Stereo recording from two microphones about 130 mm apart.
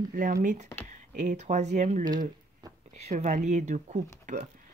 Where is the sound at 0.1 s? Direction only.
90° right.